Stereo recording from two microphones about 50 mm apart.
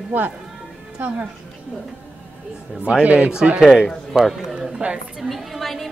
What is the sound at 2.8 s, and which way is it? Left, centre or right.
Speech, right.